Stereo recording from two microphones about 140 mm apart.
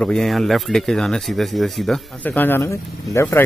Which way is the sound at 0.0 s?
5° left (ahead or behind).